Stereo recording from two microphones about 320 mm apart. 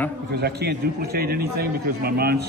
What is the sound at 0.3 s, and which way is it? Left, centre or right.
A man's voice, right.